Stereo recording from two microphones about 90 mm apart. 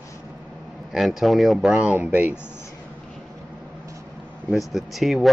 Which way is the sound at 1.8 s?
15° right (ahead or behind).